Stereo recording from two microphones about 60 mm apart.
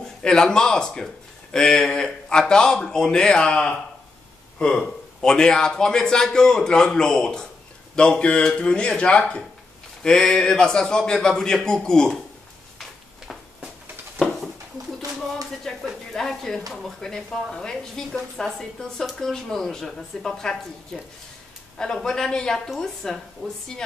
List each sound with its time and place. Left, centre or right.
0.2 s speech: centre
15.7 s a sound: centre
16.1 s a woman's voice: centre